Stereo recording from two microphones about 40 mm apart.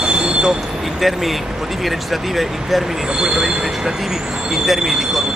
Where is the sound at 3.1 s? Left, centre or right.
Centre.